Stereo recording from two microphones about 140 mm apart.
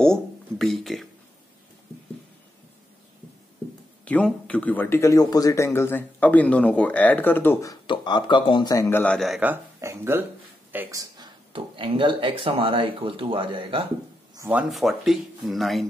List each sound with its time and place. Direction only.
0.0 s a sound: 5° left (ahead or behind)
4.0 s speech: 10° left (ahead or behind)
7.7 s speech: 35° left (ahead or behind)
8.7 s a man's voice: 20° left (ahead or behind)
9.0 s speech: 5° left (ahead or behind)
9.4 s speech: 15° right (ahead or behind)
11.0 s speech: 30° right (ahead or behind)
14.5 s speech: 5° right (ahead or behind)